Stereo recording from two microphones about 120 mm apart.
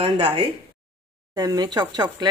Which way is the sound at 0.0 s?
40° right (ahead or behind).